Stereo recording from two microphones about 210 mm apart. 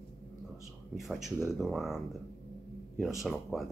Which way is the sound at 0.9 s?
Centre (ahead or behind).